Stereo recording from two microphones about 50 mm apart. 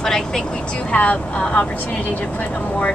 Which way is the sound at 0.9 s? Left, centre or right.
Left.